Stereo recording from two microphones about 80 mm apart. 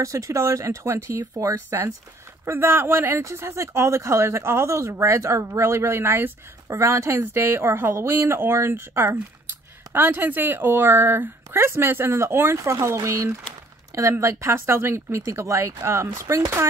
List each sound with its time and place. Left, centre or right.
0.0 s speech: right
1.2 s speech: right